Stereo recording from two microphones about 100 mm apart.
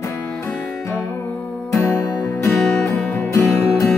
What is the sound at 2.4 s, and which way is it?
Music, 25° left (ahead or behind).